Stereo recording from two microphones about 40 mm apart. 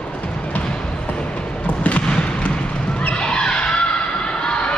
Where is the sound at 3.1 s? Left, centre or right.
Left.